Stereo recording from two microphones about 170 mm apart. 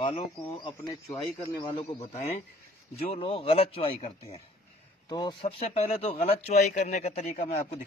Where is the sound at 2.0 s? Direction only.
45° left (ahead or behind).